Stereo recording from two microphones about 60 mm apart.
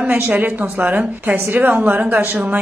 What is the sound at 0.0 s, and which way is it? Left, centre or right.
A woman's voice, right.